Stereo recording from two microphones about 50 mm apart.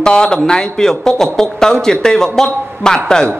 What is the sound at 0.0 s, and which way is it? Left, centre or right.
A man's voice, centre.